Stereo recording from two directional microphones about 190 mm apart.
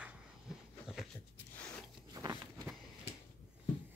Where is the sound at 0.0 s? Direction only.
Centre (ahead or behind).